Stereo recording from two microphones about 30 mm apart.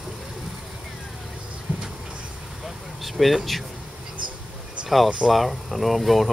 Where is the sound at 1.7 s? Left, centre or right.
Right.